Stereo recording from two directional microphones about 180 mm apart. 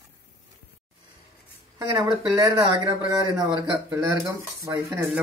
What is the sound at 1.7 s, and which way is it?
A man's voice, 20° right (ahead or behind).